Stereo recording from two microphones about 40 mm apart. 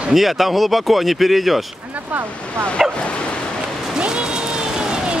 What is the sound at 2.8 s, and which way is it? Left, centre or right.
Speech, centre.